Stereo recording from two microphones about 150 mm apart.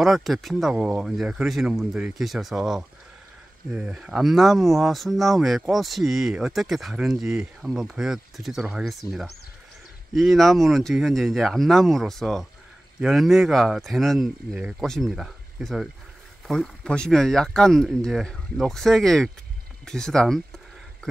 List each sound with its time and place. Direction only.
0.0 s speech: centre (ahead or behind)
10.1 s speech: centre (ahead or behind)
19.8 s a sound: 5° left (ahead or behind)